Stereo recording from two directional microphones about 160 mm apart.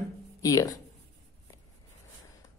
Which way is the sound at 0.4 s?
20° left (ahead or behind).